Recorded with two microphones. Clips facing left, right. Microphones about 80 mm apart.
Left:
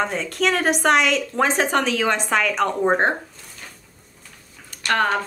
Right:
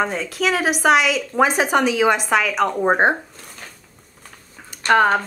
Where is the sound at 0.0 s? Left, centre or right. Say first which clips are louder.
Right 1 dB; centre.